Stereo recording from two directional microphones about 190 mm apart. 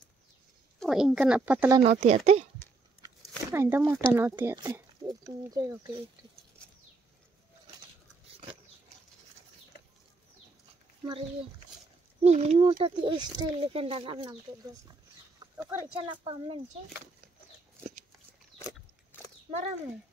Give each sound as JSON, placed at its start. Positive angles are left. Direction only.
{"t": 0.7, "sound": "speech", "side_deg": 0}
{"t": 1.8, "sound": "speech", "side_deg": -35}
{"t": 3.0, "sound": "a sound", "side_deg": -15}
{"t": 4.1, "sound": "speech", "side_deg": -10}
{"t": 12.2, "sound": "speech", "side_deg": -35}
{"t": 15.5, "sound": "speech", "side_deg": -15}
{"t": 16.1, "sound": "speech", "side_deg": -30}
{"t": 19.5, "sound": "speech", "side_deg": -30}